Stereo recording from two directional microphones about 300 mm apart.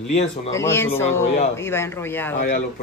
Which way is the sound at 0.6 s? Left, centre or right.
Centre.